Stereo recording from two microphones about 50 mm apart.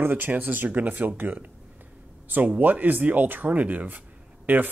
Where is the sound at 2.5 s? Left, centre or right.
Right.